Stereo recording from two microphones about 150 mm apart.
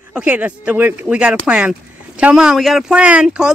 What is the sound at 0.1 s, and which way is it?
Speech, 10° right (ahead or behind).